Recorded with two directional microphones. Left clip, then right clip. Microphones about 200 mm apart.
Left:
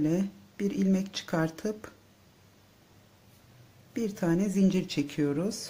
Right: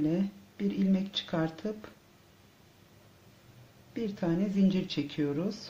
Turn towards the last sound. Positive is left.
turn(degrees=30)  # may be behind; listen again after turning